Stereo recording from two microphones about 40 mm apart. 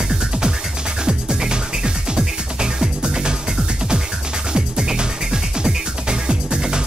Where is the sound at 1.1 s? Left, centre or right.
Centre.